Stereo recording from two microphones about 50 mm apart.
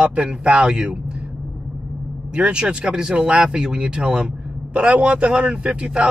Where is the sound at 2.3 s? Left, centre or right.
Centre.